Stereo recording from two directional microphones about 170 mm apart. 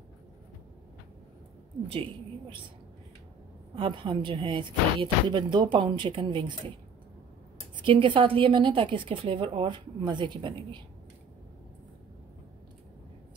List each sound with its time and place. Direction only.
3.7 s a woman's voice: 30° right (ahead or behind)
7.8 s a woman's voice: 30° right (ahead or behind)